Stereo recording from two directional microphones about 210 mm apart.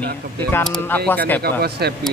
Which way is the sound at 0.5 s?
10° left (ahead or behind).